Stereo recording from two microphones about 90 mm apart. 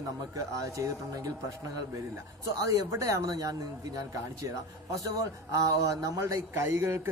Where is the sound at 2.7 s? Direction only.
40° right (ahead or behind).